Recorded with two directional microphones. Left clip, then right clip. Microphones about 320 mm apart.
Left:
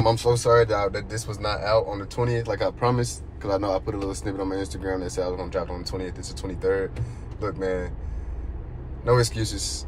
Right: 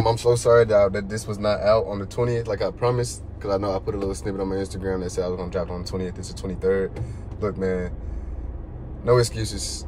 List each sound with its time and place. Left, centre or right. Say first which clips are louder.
0.0 s speech: right 2 dB; centre
9.0 s speech: right 2 dB; centre